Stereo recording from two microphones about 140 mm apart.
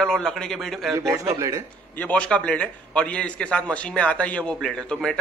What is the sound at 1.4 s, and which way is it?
Speech, 20° right (ahead or behind).